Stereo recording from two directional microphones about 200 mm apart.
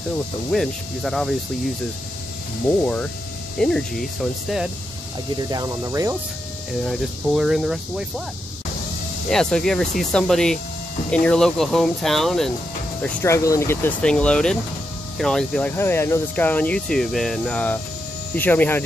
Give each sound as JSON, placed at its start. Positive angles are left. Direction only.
{"t": 0.5, "sound": "speech", "side_deg": 0}
{"t": 2.8, "sound": "speech", "side_deg": 5}
{"t": 5.5, "sound": "speech", "side_deg": -15}
{"t": 6.9, "sound": "speech", "side_deg": 0}
{"t": 9.3, "sound": "speech", "side_deg": 5}
{"t": 13.0, "sound": "speech", "side_deg": 15}